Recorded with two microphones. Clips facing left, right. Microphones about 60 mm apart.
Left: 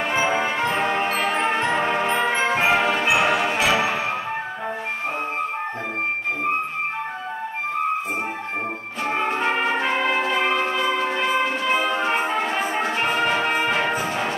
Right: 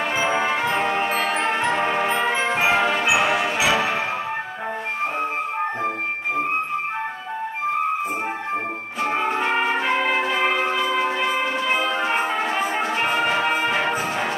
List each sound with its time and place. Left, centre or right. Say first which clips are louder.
0.3 s music: right 1 dB; centre
9.0 s music: right 1 dB; centre